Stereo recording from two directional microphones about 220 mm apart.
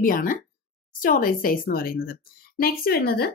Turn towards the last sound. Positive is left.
turn(degrees=45)  # may be behind; listen again after turning